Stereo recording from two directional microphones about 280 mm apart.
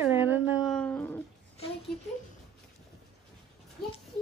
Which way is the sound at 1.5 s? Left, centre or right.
Left.